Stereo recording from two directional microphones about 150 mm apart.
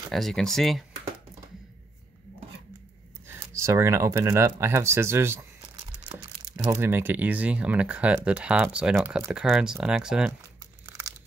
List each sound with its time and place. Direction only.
0.1 s speech: centre (ahead or behind)
3.3 s speech: 20° right (ahead or behind)
5.8 s a sound: 35° right (ahead or behind)
6.7 s speech: 15° right (ahead or behind)
10.4 s crumpling: 20° right (ahead or behind)